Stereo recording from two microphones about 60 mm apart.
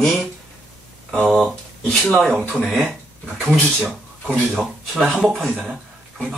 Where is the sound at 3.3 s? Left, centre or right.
Centre.